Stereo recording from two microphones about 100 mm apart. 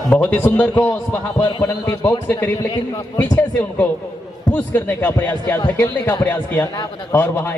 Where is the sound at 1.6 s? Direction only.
30° left (ahead or behind).